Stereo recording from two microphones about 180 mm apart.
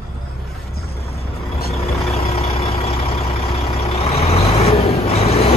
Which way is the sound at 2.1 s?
35° left (ahead or behind).